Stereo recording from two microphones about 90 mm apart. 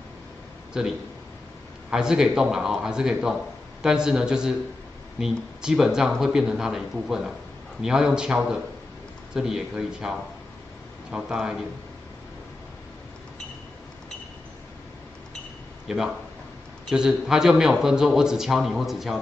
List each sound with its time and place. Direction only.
0.8 s a man's voice: 5° right (ahead or behind)
15.9 s a man's voice: 5° right (ahead or behind)